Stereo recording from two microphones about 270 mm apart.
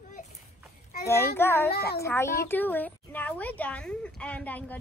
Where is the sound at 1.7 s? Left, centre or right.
Left.